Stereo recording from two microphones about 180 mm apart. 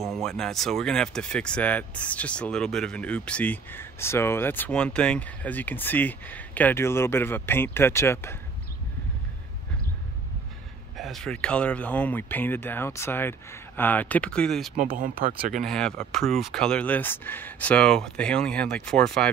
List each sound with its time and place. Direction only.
0.0 s speech: centre (ahead or behind)
11.0 s speech: centre (ahead or behind)
15.0 s speech: 50° right (ahead or behind)
15.5 s speech: 5° left (ahead or behind)